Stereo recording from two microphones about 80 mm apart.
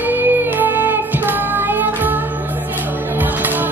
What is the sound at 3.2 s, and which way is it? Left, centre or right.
Music, right.